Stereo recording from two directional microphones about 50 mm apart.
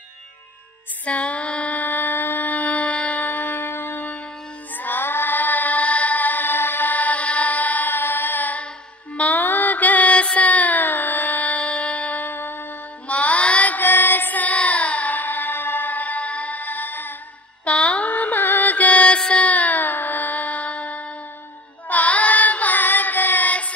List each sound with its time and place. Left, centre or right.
1.0 s music: left
3.3 s music: left
4.7 s female singing: left
9.1 s music: left
12.3 s music: left
13.1 s music: left
13.7 s music: left
17.6 s music: left
21.8 s child singing: left